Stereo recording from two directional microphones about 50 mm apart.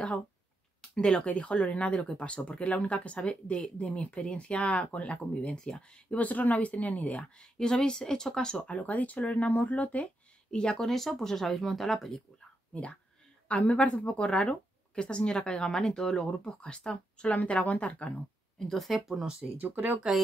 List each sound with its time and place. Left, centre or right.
0.7 s speech: centre; by 7.2 s left
7.3 s speech: centre
8.5 s speech: left
10.5 s speech: centre
10.8 s speech: centre
13.5 s speech: left
18.7 s speech: centre
18.9 s speech: centre
19.6 s speech: right